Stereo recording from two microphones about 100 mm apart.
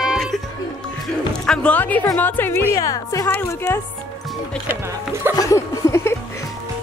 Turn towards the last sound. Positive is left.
turn(degrees=25)  # may be behind; listen again after turning